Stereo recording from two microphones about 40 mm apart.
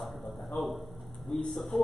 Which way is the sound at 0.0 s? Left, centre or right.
Centre.